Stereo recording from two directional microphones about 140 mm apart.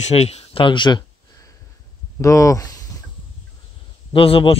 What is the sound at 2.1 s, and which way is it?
Speech, 20° left (ahead or behind).